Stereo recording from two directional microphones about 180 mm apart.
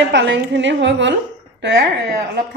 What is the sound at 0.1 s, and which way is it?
A woman's voice, 80° right.